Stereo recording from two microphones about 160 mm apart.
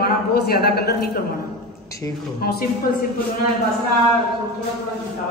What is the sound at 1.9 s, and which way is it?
Speech, 20° left (ahead or behind).